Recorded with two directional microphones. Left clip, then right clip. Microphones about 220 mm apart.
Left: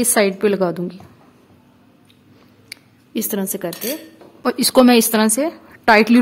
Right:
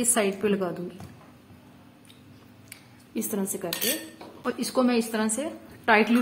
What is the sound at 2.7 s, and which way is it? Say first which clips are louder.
A woman's voice: left 9 dB; 45° left (ahead or behind).